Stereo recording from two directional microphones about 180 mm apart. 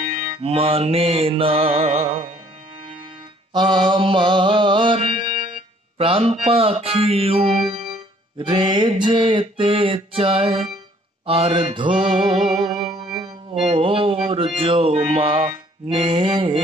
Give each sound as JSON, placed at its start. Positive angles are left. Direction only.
{"t": 0.0, "sound": "music", "side_deg": -40}
{"t": 3.5, "sound": "music", "side_deg": -25}
{"t": 8.4, "sound": "mantra", "side_deg": -25}
{"t": 11.2, "sound": "music", "side_deg": -30}